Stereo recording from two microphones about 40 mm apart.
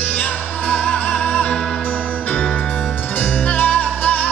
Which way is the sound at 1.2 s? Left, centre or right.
Left.